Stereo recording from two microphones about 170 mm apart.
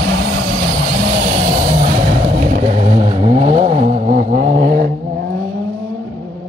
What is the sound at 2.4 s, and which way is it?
Vehicle, 45° right (ahead or behind).